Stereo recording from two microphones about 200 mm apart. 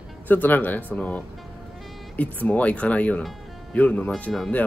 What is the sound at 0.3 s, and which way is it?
Speech, 10° left (ahead or behind).